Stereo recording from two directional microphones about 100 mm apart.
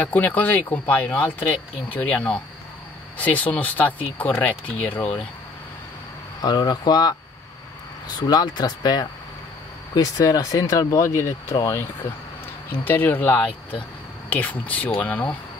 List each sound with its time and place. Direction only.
0.0 s speech: 15° left (ahead or behind)
6.4 s speech: 45° left (ahead or behind)
8.2 s speech: 45° left (ahead or behind); by 11.8 s 30° left (ahead or behind)
12.8 s speech: 20° left (ahead or behind)
13.5 s speech: 65° left (ahead or behind)
14.3 s speech: 15° left (ahead or behind)